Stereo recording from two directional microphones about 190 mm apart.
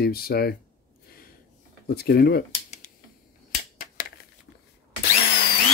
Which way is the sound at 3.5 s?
50° left (ahead or behind).